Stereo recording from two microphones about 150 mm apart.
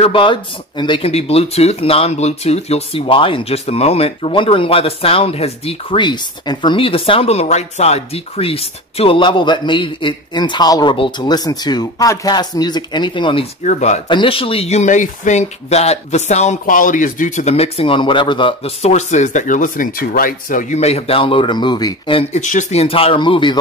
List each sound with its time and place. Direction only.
0.0 s speech: 35° left (ahead or behind)
13.7 s speech: 50° left (ahead or behind)
14.0 s speech: 35° left (ahead or behind); by 20.6 s 65° left (ahead or behind)
20.7 s speech: 45° left (ahead or behind)
22.3 s speech: 55° left (ahead or behind); by 23.6 s 30° left (ahead or behind)